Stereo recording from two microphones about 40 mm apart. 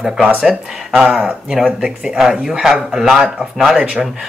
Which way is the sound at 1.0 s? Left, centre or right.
Centre.